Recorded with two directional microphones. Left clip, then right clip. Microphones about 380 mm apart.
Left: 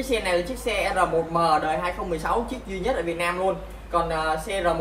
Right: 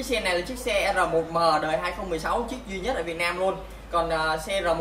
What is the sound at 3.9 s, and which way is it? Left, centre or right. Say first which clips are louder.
Speech: left 1 dB; centre.